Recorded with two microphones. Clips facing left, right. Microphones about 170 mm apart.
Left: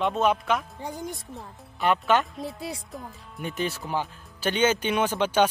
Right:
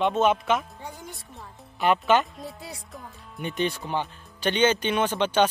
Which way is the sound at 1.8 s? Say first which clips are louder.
Right 1 dB; centre (ahead or behind).